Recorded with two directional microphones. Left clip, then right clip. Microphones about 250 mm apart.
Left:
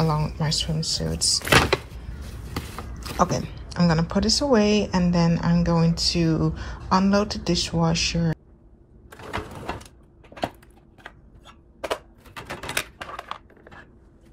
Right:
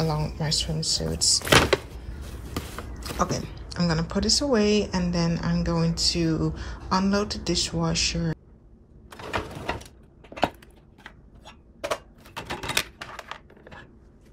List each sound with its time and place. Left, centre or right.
0.0 s speech: centre
9.1 s a sound: centre
12.4 s typewriter: centre